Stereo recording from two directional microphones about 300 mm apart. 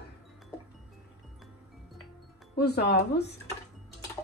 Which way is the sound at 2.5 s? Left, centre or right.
Left.